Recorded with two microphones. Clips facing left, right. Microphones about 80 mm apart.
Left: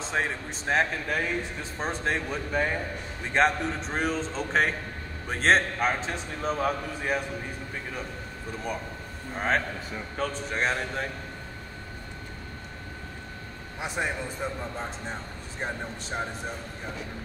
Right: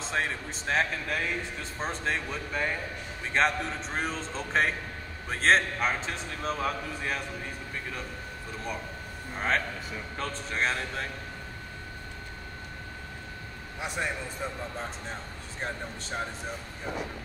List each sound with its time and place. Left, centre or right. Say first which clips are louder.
0.0 s a man's voice: left 2 dB; centre
9.3 s speech: left 2 dB; centre
13.7 s speech: left 2 dB; centre
14.4 s speech: left 3 dB; centre